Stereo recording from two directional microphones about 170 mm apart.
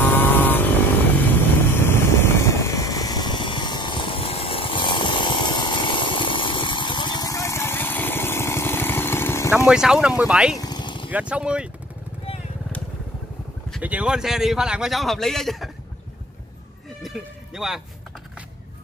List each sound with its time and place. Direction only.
0.0 s vehicle: 10° left (ahead or behind)
1.7 s vehicle: 15° left (ahead or behind)
9.7 s a man's voice: 5° right (ahead or behind)
10.6 s vehicle: 25° left (ahead or behind)
11.1 s speech: 10° right (ahead or behind)
13.7 s a man's voice: 10° right (ahead or behind)
17.0 s a sound: centre (ahead or behind)